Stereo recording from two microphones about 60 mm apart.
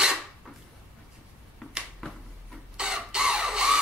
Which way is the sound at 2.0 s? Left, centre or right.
Centre.